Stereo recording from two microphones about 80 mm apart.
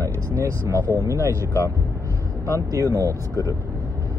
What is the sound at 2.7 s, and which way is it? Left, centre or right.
Speech, right.